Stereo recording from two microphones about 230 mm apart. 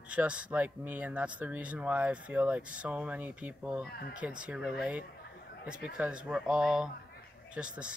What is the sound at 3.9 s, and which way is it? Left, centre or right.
Speech, left.